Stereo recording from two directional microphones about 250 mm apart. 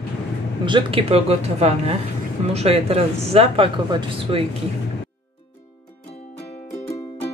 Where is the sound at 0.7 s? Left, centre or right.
Centre.